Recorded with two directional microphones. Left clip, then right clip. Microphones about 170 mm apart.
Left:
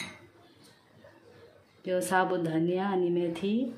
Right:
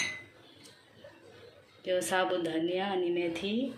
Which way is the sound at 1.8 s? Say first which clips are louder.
Left 2 dB; 75° left (ahead or behind).